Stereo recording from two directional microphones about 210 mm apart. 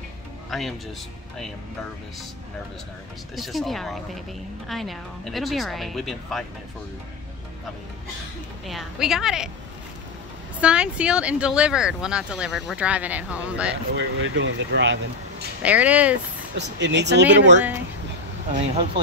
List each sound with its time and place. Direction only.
0.5 s speech: centre (ahead or behind)
3.3 s speech: centre (ahead or behind)
8.6 s speech: centre (ahead or behind)
10.6 s speech: 5° right (ahead or behind)
13.9 s speech: 60° right (ahead or behind)
15.6 s speech: 5° right (ahead or behind)
16.5 s speech: 55° right (ahead or behind)
18.5 s speech: 30° right (ahead or behind)